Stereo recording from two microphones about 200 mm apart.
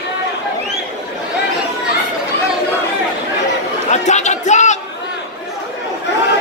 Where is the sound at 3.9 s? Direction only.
35° left (ahead or behind).